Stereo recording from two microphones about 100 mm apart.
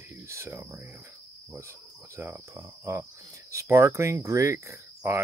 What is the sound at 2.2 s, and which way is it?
Speech, 25° right (ahead or behind).